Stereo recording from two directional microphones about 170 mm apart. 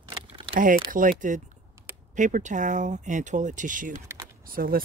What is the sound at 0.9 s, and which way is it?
Speech, 50° right (ahead or behind).